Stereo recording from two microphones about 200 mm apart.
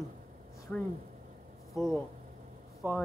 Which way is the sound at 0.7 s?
5° left (ahead or behind).